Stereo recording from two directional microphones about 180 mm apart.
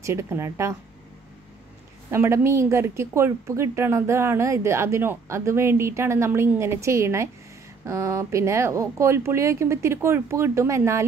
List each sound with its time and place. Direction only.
0.0 s a woman's voice: 15° right (ahead or behind)
2.0 s a woman's voice: 15° right (ahead or behind)